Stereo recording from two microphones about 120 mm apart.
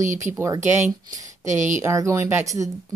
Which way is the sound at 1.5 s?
90° right.